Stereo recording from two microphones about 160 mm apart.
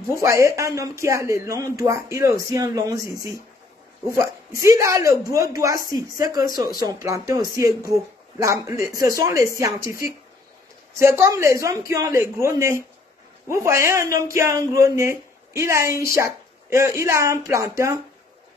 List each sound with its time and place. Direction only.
0.1 s speech: 15° right (ahead or behind)
4.2 s a man's voice: 20° right (ahead or behind)